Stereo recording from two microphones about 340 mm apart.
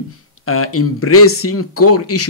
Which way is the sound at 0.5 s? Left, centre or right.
Left.